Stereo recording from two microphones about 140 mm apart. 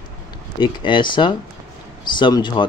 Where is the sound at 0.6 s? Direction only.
35° left (ahead or behind).